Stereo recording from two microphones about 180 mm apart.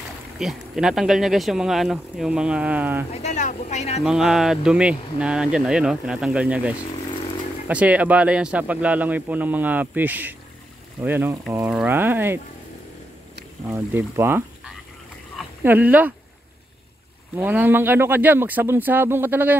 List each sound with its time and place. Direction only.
0.4 s speech: 5° right (ahead or behind)
3.1 s speech: 40° left (ahead or behind)
4.0 s speech: centre (ahead or behind)
13.7 s speech: 15° right (ahead or behind)
17.4 s speech: 10° right (ahead or behind)